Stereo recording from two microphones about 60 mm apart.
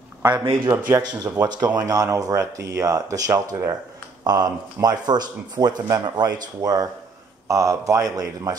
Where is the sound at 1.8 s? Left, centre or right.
Right.